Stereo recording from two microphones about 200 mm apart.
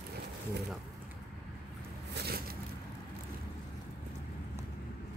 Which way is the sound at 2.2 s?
50° right (ahead or behind).